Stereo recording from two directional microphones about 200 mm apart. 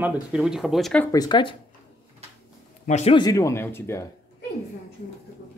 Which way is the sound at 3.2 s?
15° left (ahead or behind).